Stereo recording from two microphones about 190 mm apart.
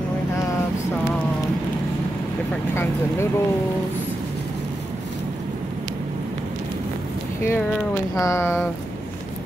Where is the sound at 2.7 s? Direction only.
10° left (ahead or behind).